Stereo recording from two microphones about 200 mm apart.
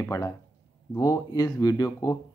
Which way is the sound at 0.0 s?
15° left (ahead or behind).